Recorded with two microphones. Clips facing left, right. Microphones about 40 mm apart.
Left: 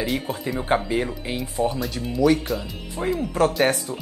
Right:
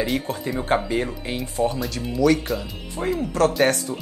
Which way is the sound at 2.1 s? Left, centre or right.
Centre.